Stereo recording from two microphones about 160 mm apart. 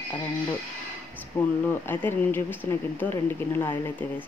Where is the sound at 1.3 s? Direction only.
15° left (ahead or behind).